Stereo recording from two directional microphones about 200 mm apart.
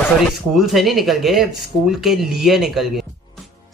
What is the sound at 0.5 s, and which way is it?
Speech, centre (ahead or behind).